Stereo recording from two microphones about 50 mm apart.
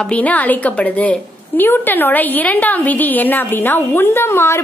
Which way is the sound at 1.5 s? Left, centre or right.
Left.